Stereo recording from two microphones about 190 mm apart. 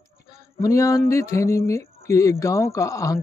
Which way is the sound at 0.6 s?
15° left (ahead or behind).